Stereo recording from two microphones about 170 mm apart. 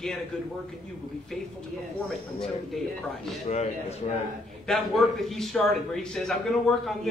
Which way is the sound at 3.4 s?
40° left (ahead or behind).